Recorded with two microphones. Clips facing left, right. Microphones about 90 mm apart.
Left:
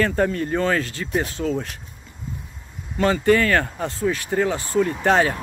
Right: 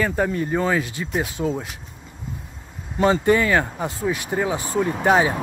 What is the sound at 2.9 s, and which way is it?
Speech, 20° right (ahead or behind).